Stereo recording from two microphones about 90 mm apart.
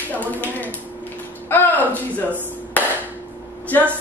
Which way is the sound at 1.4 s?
20° left (ahead or behind).